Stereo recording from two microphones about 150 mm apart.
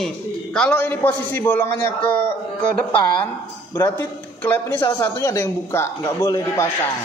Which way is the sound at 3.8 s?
15° left (ahead or behind).